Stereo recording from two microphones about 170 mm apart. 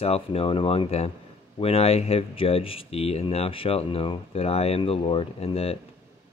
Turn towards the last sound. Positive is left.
turn(degrees=35)  # may be behind; listen again after turning